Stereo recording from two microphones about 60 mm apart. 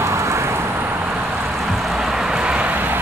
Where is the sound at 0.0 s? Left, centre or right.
Right.